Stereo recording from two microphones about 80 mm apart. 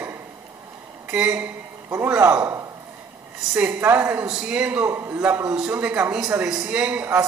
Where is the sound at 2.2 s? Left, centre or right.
Right.